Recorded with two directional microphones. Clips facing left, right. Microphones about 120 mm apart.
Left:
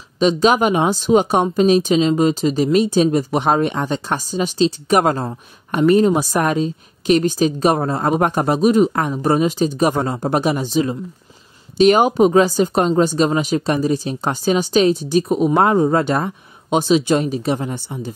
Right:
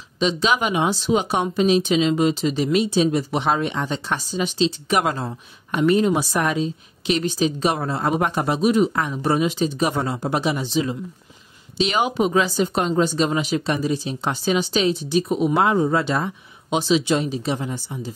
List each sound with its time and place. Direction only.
0.2 s speech: 45° left (ahead or behind)